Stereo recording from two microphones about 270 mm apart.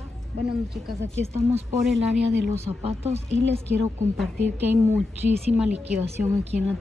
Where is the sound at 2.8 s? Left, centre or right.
Right.